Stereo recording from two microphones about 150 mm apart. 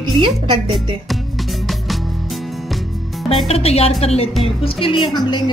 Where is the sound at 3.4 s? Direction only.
45° left (ahead or behind).